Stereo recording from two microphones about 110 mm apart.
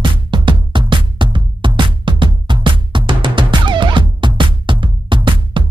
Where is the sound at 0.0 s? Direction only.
45° right (ahead or behind).